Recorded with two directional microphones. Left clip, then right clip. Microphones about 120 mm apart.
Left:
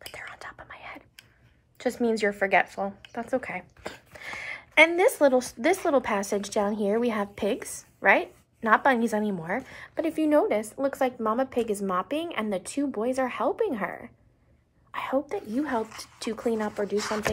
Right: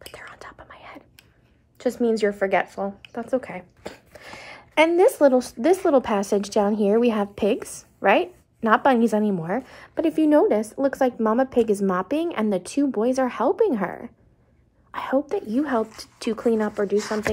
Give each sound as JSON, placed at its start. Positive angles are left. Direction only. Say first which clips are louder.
{"t": 0.2, "sound": "whispering", "louder": "even", "side_deg": -5}
{"t": 1.9, "sound": "a woman's voice", "louder": "right 4 dB", "side_deg": -10}
{"t": 2.8, "sound": "speech", "louder": "right 3 dB", "side_deg": -5}
{"t": 3.3, "sound": "speech", "louder": "right 4 dB", "side_deg": -20}
{"t": 4.4, "sound": "a sound", "louder": "even", "side_deg": -30}
{"t": 5.1, "sound": "speech", "louder": "right 4 dB", "side_deg": 0}
{"t": 5.5, "sound": "a woman's voice", "louder": "right 5 dB", "side_deg": -30}
{"t": 10.2, "sound": "a woman's voice", "louder": "right 4 dB", "side_deg": -55}
{"t": 14.9, "sound": "a sound", "louder": "right 3 dB", "side_deg": -50}
{"t": 15.5, "sound": "a woman's voice", "louder": "right 4 dB", "side_deg": -30}